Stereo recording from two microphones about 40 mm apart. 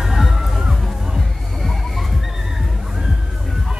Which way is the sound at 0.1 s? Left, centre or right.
Centre.